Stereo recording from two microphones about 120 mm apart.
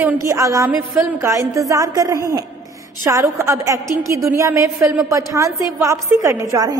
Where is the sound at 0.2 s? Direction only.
25° right (ahead or behind).